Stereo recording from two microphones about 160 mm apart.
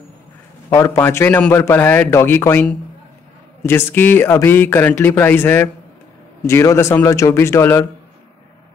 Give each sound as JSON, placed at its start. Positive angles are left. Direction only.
{"t": 0.7, "sound": "a man's voice", "side_deg": 15}